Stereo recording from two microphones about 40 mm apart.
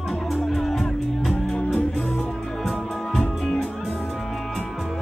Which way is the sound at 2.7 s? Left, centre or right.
Centre.